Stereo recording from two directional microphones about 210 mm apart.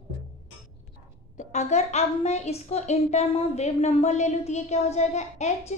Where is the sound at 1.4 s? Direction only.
35° left (ahead or behind).